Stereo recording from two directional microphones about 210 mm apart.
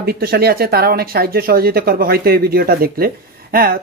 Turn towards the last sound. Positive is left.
turn(degrees=-45)  # may be behind; listen again after turning